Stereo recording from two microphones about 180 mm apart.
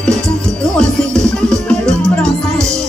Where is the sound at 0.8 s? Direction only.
5° left (ahead or behind).